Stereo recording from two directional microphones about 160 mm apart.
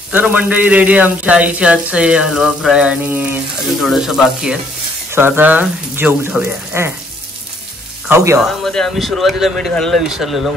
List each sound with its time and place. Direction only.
0.1 s speech: 10° right (ahead or behind)
5.1 s speech: 15° right (ahead or behind)
8.1 s speech: 15° right (ahead or behind)
8.4 s speech: centre (ahead or behind)